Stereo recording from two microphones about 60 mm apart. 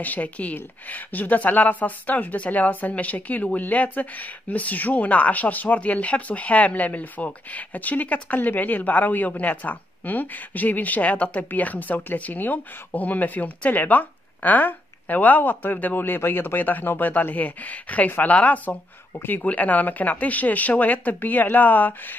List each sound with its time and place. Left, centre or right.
0.0 s a woman's voice: left
19.1 s a woman's voice: left